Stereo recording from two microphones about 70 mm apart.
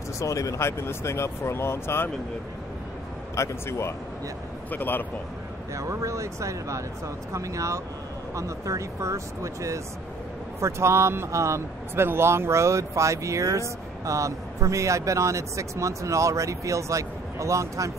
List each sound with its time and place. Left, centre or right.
0.2 s speech: left
3.3 s speech: left
4.6 s a man's voice: left
5.8 s speech: right